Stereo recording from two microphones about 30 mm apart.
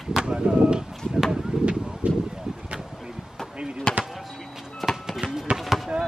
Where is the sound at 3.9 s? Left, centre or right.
Left.